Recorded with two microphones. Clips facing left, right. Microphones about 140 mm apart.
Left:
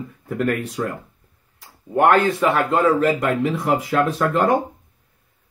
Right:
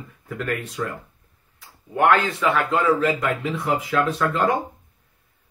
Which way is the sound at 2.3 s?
45° left (ahead or behind).